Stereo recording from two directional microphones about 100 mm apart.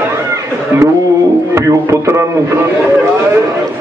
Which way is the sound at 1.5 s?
30° right (ahead or behind).